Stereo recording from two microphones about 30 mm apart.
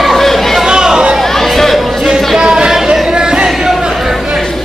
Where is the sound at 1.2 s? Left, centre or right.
Centre.